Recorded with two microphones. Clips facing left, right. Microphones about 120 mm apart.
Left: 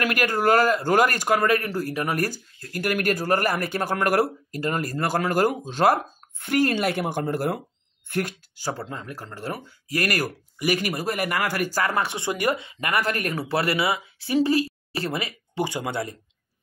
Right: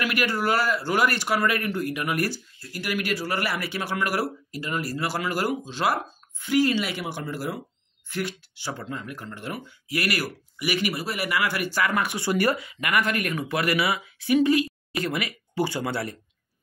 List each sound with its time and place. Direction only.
0.0 s speech: 45° left (ahead or behind); by 16.2 s 20° left (ahead or behind)